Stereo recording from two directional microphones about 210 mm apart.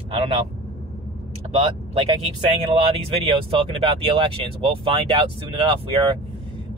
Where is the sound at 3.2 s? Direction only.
25° right (ahead or behind).